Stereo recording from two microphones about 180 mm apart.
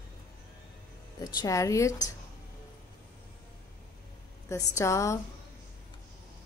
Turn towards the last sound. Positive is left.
turn(degrees=15)  # may be behind; listen again after turning